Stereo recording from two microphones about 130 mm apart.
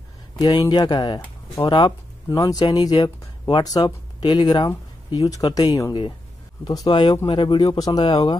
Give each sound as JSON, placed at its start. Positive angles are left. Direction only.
{"t": 0.4, "sound": "speech", "side_deg": 30}